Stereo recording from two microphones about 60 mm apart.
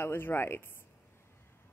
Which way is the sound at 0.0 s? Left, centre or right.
Left.